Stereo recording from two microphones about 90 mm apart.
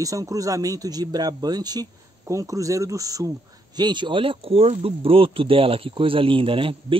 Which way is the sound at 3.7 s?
55° right (ahead or behind).